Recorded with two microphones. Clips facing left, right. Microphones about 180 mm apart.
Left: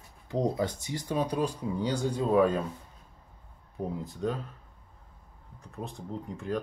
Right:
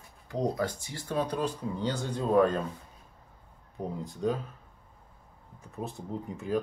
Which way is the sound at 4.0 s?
Centre (ahead or behind).